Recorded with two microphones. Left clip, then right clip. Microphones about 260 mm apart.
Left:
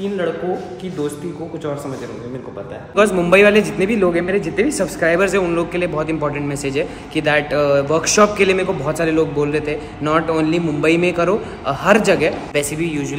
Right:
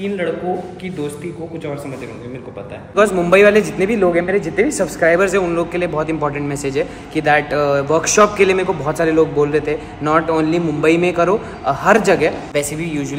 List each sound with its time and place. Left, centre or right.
3.0 s a man's voice: centre